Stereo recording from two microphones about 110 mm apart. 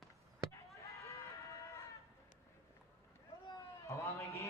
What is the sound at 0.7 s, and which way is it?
Run, 30° left (ahead or behind).